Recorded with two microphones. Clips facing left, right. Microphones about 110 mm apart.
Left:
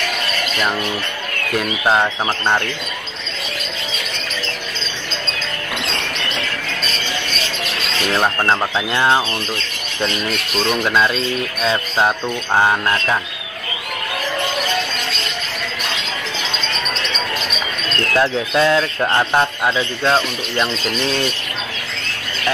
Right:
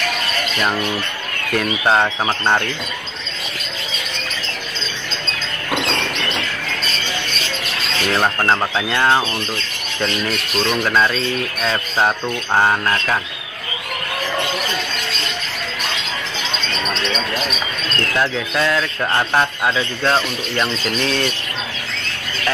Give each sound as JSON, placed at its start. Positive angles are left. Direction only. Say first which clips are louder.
{"t": 1.5, "sound": "speech", "louder": "even", "side_deg": 5}
{"t": 8.1, "sound": "speech", "louder": "even", "side_deg": 5}
{"t": 10.6, "sound": "speech", "louder": "even", "side_deg": 10}
{"t": 18.1, "sound": "speech", "louder": "left 4 dB", "side_deg": 25}